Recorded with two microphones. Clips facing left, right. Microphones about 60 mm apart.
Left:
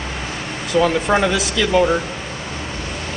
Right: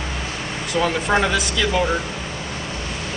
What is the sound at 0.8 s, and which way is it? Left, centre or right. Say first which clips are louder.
Speech: left 2 dB; centre.